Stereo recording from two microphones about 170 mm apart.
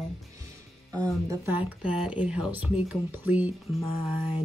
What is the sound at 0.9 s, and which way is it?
Speech, 20° right (ahead or behind).